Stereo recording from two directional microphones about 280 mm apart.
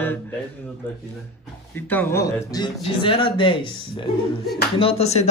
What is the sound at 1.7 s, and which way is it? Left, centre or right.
A man's voice, centre.